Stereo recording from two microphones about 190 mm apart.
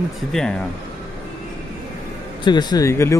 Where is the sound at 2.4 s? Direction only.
20° left (ahead or behind).